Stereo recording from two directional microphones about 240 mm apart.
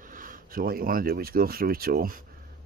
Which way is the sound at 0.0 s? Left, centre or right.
Right.